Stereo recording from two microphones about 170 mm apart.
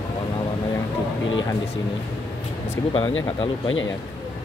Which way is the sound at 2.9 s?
25° left (ahead or behind).